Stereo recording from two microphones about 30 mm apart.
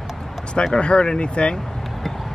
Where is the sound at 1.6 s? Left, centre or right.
Centre.